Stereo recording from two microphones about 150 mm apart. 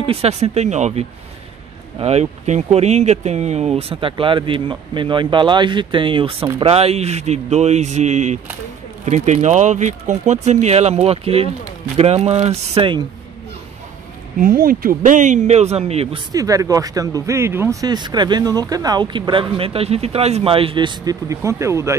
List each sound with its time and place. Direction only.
0.0 s speech: 40° right (ahead or behind)
14.4 s speech: 70° right (ahead or behind); by 16.2 s 45° right (ahead or behind)
16.3 s speech: 25° right (ahead or behind)